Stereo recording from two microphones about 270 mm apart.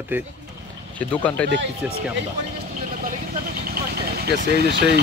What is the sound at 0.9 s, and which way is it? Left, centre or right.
A man's voice, centre.